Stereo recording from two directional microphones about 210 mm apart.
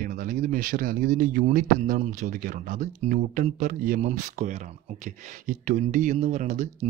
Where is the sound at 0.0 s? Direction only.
40° right (ahead or behind).